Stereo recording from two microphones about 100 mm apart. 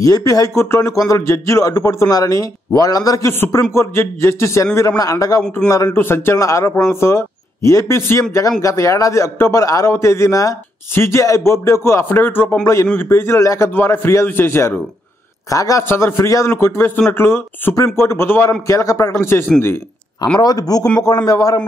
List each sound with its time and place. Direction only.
0.0 s speech: 35° left (ahead or behind)
5.9 s speech: 25° left (ahead or behind)
15.5 s speech: 35° left (ahead or behind)
20.3 s speech: 40° left (ahead or behind)